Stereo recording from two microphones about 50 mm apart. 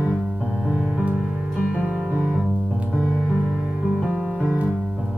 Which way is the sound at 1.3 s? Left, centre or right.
Right.